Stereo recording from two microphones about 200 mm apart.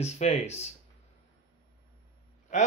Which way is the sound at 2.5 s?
35° left (ahead or behind).